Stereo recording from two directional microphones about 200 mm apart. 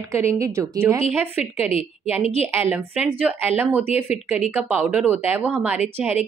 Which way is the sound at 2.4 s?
10° right (ahead or behind).